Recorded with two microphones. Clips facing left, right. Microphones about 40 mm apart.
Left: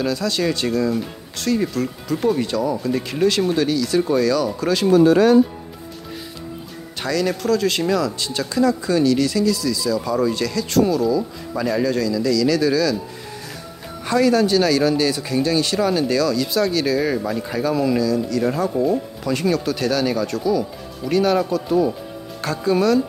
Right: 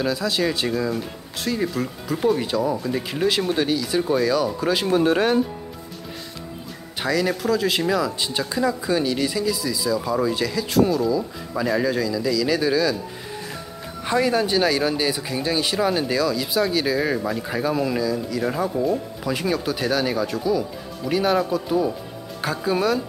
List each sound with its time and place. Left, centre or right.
0.0 s speech: centre
4.9 s speech: right
7.0 s speech: centre
14.0 s speech: centre
18.7 s speech: centre
19.2 s speech: centre